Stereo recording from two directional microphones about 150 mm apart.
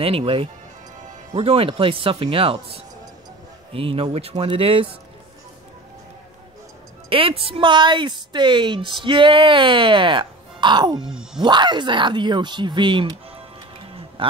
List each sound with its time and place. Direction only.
0.0 s a woman's voice: 40° right (ahead or behind)
7.1 s a woman's voice: 35° right (ahead or behind)
11.1 s speech: 5° right (ahead or behind)
11.4 s a woman's voice: 30° right (ahead or behind)